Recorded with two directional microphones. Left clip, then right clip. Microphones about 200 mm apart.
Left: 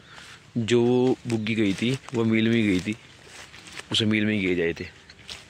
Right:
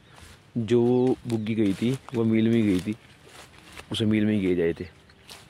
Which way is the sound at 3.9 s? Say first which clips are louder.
Left 2 dB; 10° right (ahead or behind).